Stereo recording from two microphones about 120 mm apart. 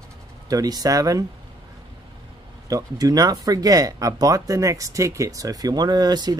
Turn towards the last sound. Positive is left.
turn(degrees=-35)  # may be behind; listen again after turning